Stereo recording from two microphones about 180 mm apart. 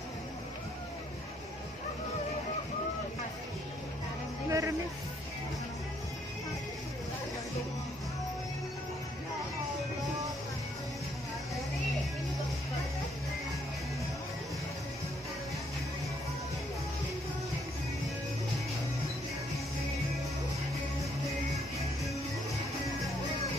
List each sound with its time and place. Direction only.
4.5 s music: 15° right (ahead or behind)